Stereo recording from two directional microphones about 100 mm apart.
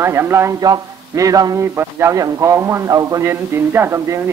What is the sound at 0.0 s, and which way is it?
Speech, 25° right (ahead or behind).